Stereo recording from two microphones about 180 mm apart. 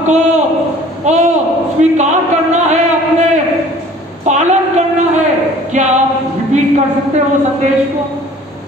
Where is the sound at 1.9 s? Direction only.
40° right (ahead or behind).